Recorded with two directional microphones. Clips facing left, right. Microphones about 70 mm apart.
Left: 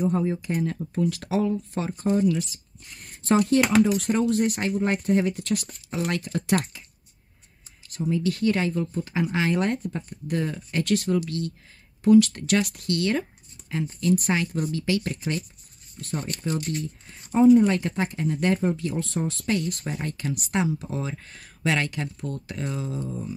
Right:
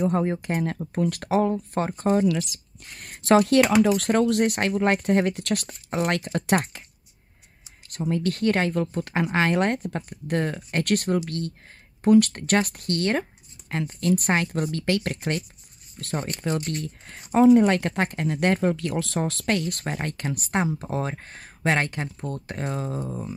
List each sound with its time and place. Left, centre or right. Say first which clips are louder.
0.0 s speech: right 1 dB; right
2.2 s speech: even; right
7.9 s speech: even; right
11.2 s speech: even; right
13.7 s speech: even; right
17.5 s speech: left 1 dB; right